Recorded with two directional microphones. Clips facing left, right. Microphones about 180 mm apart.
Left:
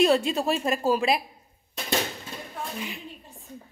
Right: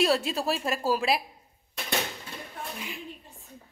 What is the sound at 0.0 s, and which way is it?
A woman's voice, centre (ahead or behind).